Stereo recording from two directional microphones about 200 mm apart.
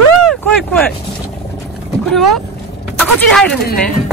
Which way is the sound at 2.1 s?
Centre (ahead or behind).